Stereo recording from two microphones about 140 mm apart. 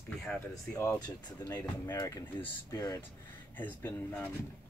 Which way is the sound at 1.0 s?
30° left (ahead or behind).